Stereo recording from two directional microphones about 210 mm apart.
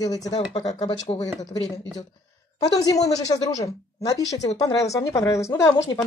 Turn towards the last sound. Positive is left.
turn(degrees=15)  # may be behind; listen again after turning